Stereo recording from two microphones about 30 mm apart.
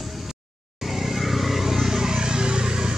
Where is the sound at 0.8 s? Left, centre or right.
Centre.